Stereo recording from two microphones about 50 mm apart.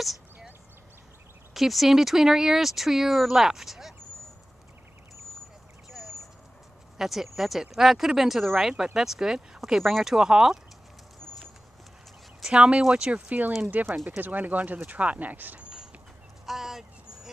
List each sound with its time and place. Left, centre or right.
0.0 s chop: centre
1.5 s speech: centre
5.9 s a sound: centre
7.0 s speech: centre
12.4 s speech: centre
13.6 s speech: right
16.4 s a sound: centre